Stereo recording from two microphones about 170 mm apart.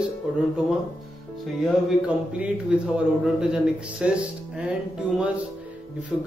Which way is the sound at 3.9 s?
5° right (ahead or behind).